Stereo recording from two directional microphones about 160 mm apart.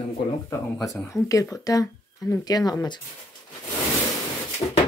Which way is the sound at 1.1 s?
20° left (ahead or behind).